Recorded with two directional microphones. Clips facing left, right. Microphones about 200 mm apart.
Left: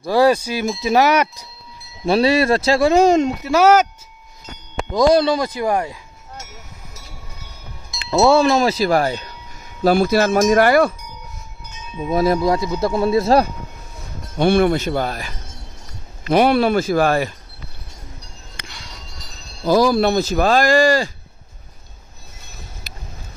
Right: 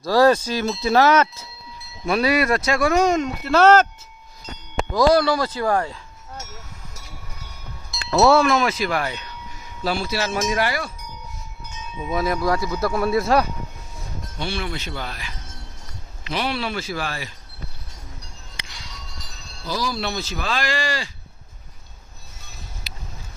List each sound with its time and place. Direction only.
0.0 s speech: 15° left (ahead or behind)
2.0 s speech: 30° left (ahead or behind)
3.4 s speech: 10° left (ahead or behind)
4.9 s speech: 20° left (ahead or behind)
8.3 s speech: 30° left (ahead or behind)
9.8 s speech: 50° left (ahead or behind)
12.1 s speech: 35° left (ahead or behind)
12.4 s speech: 20° left (ahead or behind)
14.3 s speech: 55° left (ahead or behind)
18.6 s music: 55° left (ahead or behind)
19.6 s speech: 50° left (ahead or behind)
22.8 s boat: 50° left (ahead or behind)